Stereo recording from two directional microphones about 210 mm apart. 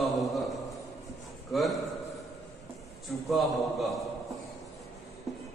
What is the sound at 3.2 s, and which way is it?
Speech, centre (ahead or behind).